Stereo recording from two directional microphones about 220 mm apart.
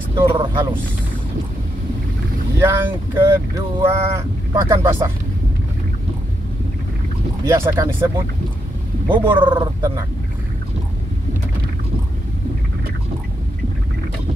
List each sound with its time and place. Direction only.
0.1 s speech: 20° right (ahead or behind)
2.6 s speech: 10° right (ahead or behind)
7.4 s speech: 15° right (ahead or behind)
9.4 s speech: 20° right (ahead or behind)